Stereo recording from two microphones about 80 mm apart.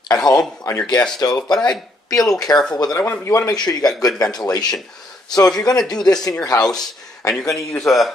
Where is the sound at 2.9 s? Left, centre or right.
Left.